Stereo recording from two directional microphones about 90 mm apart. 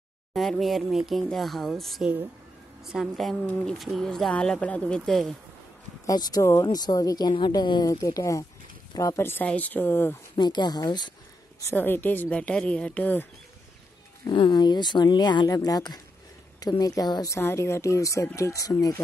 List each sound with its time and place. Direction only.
0.3 s speech: centre (ahead or behind)
3.4 s speech: 15° left (ahead or behind)
3.7 s speech: centre (ahead or behind)
6.0 s speech: 45° left (ahead or behind)
7.3 s speech: 55° left (ahead or behind); by 10.1 s 25° left (ahead or behind)
10.3 s speech: 55° left (ahead or behind)
11.7 s speech: 20° left (ahead or behind)
14.3 s speech: 60° left (ahead or behind)
17.3 s speech: 30° left (ahead or behind)